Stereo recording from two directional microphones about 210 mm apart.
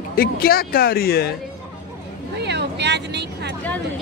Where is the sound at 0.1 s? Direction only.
45° left (ahead or behind).